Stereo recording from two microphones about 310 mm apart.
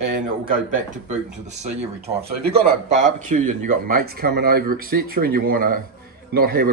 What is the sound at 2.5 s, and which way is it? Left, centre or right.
Speech, right.